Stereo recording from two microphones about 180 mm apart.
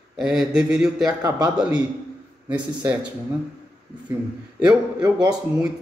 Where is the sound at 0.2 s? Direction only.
5° right (ahead or behind).